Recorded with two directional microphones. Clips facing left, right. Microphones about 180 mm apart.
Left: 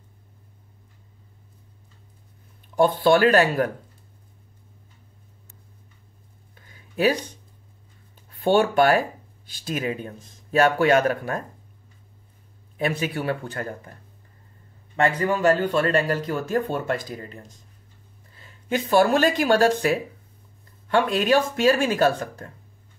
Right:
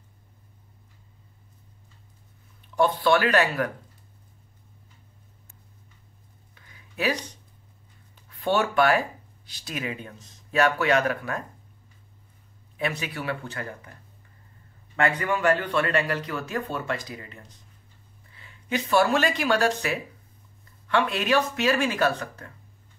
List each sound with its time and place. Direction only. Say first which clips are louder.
2.7 s speech: left 3 dB; 50° left (ahead or behind)
6.5 s a sound: left 7 dB; 45° left (ahead or behind)
8.3 s speech: left 5 dB; 50° left (ahead or behind)
12.7 s speech: left 5 dB; 45° left (ahead or behind)
15.0 s speech: left 3 dB; 35° left (ahead or behind)
18.4 s a sound: left 3 dB; 35° left (ahead or behind)
19.0 s speech: left 4 dB; 40° left (ahead or behind)
20.9 s speech: left 4 dB; 40° left (ahead or behind)